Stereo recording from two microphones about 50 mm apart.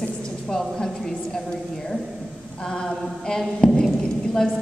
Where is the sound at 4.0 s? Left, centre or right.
Centre.